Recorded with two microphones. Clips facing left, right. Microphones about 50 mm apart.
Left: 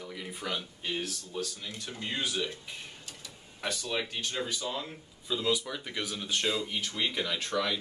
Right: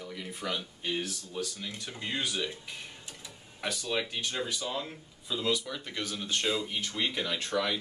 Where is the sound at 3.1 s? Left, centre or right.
Centre.